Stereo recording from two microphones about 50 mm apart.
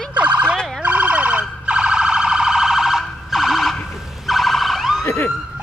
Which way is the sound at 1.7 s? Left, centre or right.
Right.